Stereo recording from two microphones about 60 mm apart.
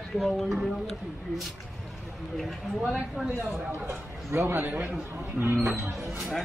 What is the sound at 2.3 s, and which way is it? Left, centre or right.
Speech, centre.